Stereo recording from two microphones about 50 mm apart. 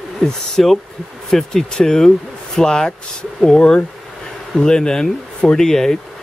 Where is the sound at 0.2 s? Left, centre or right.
Centre.